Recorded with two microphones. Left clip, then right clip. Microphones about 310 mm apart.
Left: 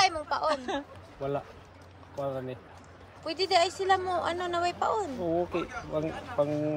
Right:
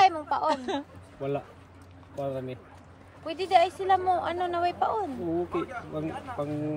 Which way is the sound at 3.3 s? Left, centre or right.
Centre.